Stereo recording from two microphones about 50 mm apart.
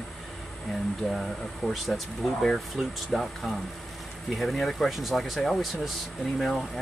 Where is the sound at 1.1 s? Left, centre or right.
Centre.